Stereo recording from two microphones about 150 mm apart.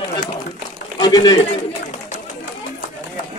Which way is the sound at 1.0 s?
25° left (ahead or behind).